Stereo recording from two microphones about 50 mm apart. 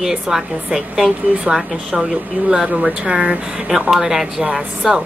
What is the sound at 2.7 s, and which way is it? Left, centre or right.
Speech, right.